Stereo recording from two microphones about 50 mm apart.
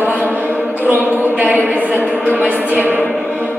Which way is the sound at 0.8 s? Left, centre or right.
Right.